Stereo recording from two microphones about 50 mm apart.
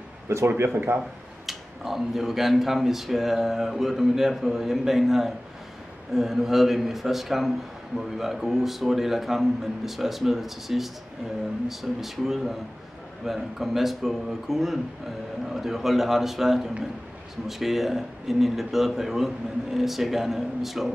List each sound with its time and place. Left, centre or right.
0.6 s speech: right
1.4 s speech: centre